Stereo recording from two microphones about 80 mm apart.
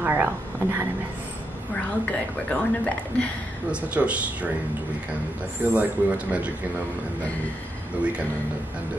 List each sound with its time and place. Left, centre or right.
0.0 s speech: right
2.0 s speech: centre
3.7 s speech: centre
5.7 s speech: centre